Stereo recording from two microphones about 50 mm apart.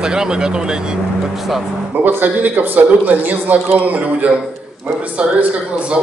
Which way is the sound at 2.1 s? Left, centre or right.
Right.